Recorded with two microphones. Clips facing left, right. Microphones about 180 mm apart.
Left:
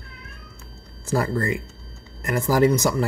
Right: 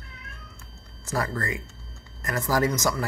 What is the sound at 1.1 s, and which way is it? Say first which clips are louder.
Speech: left 6 dB; 30° left (ahead or behind).